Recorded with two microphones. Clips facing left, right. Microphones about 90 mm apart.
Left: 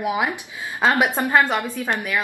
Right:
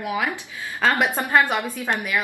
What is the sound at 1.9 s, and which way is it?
Speech, 5° right (ahead or behind).